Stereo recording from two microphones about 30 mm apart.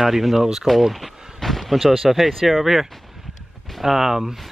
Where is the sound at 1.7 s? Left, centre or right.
Centre.